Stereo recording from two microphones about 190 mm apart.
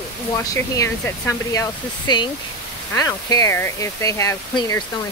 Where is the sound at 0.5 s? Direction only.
15° left (ahead or behind).